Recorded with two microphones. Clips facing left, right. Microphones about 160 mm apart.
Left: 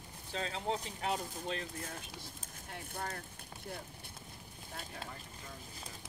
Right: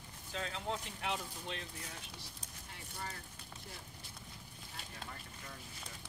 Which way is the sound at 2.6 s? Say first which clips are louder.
Left 5 dB; 55° left (ahead or behind).